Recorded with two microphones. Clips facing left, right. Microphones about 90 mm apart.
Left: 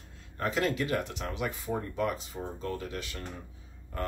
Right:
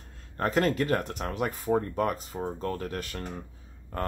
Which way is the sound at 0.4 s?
45° right (ahead or behind).